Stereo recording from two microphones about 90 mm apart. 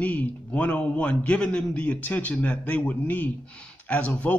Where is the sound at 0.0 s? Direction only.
15° left (ahead or behind).